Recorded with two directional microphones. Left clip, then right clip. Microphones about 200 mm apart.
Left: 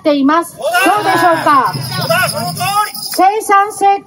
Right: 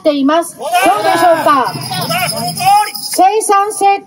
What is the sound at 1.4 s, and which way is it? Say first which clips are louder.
Speech: even; 25° right (ahead or behind).